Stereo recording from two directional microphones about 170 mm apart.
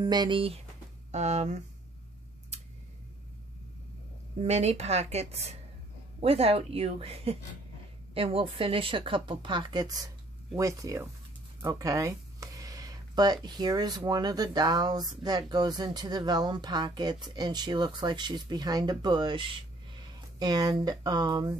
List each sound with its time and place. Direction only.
0.0 s speech: 25° right (ahead or behind)
1.1 s speech: 40° right (ahead or behind)
4.4 s speech: 40° right (ahead or behind); by 21.5 s 25° right (ahead or behind)